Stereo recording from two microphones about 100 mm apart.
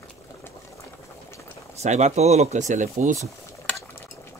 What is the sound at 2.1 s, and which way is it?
Speech, 90° right.